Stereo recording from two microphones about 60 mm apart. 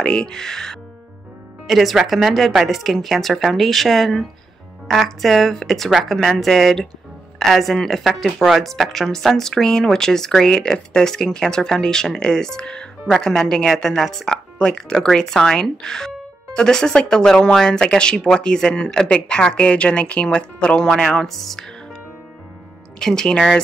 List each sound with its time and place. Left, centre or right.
0.0 s speech: centre
22.9 s speech: centre